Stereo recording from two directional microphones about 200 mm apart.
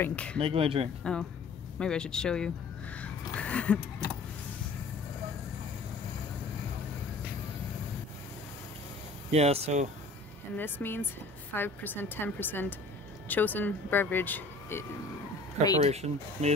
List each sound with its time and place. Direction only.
0.0 s speech: 5° left (ahead or behind)
0.4 s speech: 30° right (ahead or behind)
1.0 s speech: 5° left (ahead or behind)
9.3 s speech: 30° right (ahead or behind)
10.6 s speech: 10° left (ahead or behind)
15.8 s speech: 30° right (ahead or behind)